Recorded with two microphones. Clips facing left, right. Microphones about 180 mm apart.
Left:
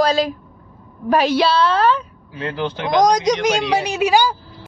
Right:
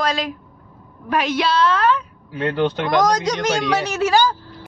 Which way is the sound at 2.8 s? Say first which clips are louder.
Left 6 dB; 15° left (ahead or behind).